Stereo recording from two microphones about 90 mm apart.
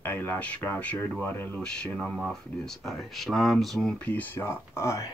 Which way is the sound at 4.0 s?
15° left (ahead or behind).